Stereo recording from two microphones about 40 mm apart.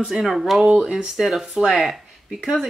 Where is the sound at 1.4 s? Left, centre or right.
Centre.